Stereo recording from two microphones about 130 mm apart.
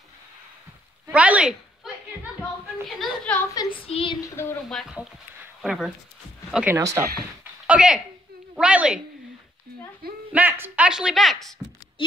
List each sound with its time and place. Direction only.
1.1 s speech: 10° right (ahead or behind)
2.8 s speech: centre (ahead or behind)
3.5 s speech: 45° left (ahead or behind)
4.2 s a woman's voice: 20° left (ahead or behind)
5.6 s speech: centre (ahead or behind)
6.8 s speech: 25° right (ahead or behind)
7.6 s speech: 10° right (ahead or behind)
10.3 s speech: 10° right (ahead or behind)